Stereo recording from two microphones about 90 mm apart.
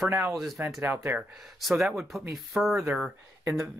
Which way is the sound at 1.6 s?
Centre (ahead or behind).